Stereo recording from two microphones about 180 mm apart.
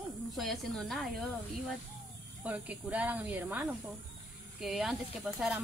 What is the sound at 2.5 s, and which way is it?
Speech, 10° right (ahead or behind).